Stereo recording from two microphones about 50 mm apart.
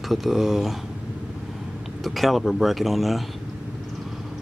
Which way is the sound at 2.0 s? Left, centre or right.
Centre.